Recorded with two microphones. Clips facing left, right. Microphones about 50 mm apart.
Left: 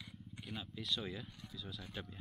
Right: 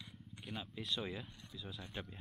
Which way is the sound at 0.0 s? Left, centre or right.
Centre.